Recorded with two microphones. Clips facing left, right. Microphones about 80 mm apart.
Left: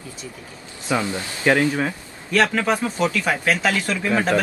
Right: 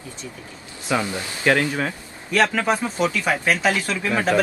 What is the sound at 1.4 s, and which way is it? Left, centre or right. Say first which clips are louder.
Speech: left 1 dB; centre.